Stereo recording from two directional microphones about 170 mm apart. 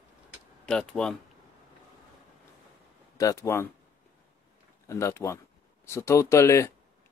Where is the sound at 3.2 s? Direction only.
20° left (ahead or behind).